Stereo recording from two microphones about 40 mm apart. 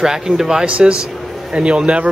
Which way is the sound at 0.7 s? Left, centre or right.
Right.